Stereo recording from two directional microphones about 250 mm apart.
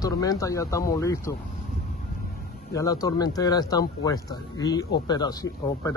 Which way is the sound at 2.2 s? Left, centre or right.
Left.